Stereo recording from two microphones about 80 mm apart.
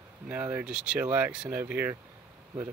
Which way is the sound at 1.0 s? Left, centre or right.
Right.